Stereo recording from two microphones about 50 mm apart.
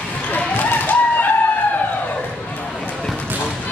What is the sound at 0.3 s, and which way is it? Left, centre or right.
Chicken, left.